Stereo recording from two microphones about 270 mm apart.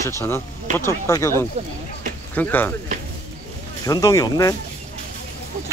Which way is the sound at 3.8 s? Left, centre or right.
Centre.